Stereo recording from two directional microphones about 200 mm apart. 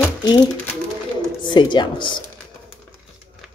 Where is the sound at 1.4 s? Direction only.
25° left (ahead or behind).